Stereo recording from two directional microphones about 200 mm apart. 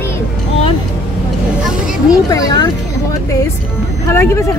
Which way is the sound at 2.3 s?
15° left (ahead or behind).